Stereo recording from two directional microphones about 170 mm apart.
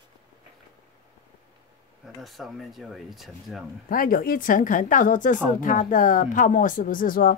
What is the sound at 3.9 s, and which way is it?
Speech, 55° left (ahead or behind).